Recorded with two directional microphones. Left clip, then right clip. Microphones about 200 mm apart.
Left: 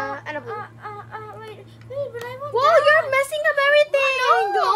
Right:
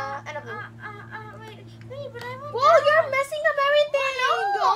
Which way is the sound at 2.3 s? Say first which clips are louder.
Left 1 dB; 40° left (ahead or behind).